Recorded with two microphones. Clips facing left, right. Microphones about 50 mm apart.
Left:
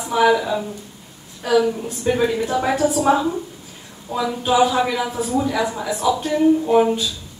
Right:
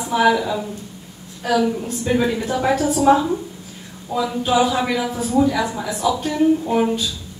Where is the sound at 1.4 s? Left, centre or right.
Centre.